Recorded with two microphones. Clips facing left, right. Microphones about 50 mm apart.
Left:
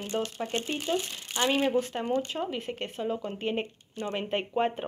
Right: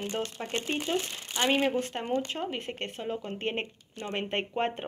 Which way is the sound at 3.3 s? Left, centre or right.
Right.